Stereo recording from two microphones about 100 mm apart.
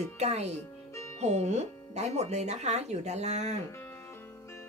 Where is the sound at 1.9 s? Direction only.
90° right.